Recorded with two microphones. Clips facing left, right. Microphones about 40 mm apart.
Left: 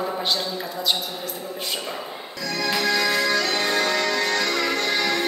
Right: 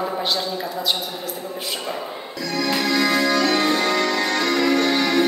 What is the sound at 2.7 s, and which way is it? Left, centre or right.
Music, centre.